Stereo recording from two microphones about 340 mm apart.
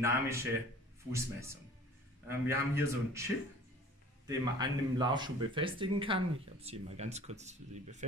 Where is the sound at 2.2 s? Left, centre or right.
Centre.